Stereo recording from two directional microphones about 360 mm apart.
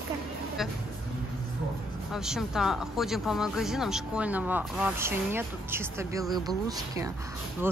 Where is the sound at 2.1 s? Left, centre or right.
Centre.